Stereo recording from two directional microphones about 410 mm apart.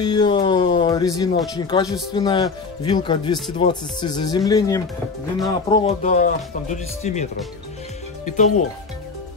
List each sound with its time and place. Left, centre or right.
0.0 s speech: centre